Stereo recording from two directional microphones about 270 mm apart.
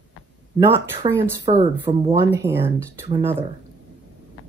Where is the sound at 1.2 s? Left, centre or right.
Centre.